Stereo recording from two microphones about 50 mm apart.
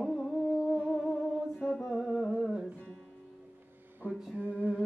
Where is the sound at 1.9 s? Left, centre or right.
Centre.